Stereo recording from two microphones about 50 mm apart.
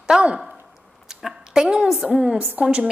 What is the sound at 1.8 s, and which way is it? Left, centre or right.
Speech, centre.